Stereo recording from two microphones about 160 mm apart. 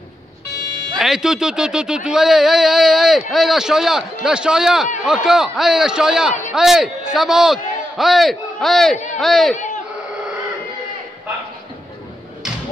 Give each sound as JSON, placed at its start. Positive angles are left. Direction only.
{"t": 0.9, "sound": "a man's voice", "side_deg": 0}
{"t": 8.9, "sound": "a man's voice", "side_deg": 50}
{"t": 9.2, "sound": "speech", "side_deg": 0}